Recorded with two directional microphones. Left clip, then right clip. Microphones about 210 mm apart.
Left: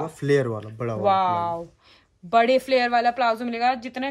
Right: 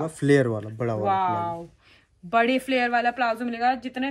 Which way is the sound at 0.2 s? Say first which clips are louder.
Right 1 dB; 20° right (ahead or behind).